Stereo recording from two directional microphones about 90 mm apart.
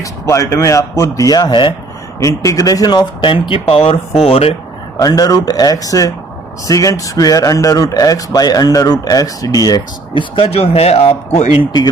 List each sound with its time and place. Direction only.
0.0 s speech: 35° left (ahead or behind); by 1.7 s 55° left (ahead or behind)
2.1 s speech: 35° left (ahead or behind); by 4.6 s 90° left
4.9 s speech: 45° left (ahead or behind)
10.1 s speech: 85° left